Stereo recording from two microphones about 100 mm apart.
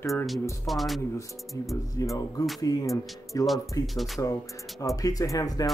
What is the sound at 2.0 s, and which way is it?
Speech, 35° left (ahead or behind).